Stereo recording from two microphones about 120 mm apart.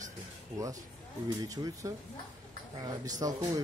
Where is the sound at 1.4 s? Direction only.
30° right (ahead or behind).